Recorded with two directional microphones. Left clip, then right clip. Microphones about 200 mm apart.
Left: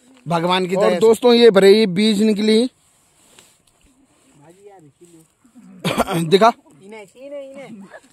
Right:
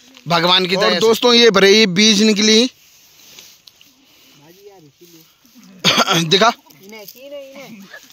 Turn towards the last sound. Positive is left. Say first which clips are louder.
# left 1 dB
turn(degrees=5)  # may be behind; listen again after turning